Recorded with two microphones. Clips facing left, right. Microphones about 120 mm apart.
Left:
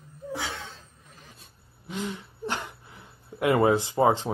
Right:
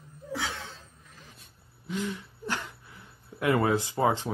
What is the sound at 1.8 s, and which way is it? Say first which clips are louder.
Speech: even; 20° left (ahead or behind).